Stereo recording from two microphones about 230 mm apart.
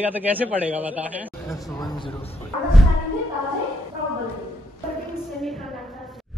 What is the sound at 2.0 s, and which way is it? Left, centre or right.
Bow-wow, left.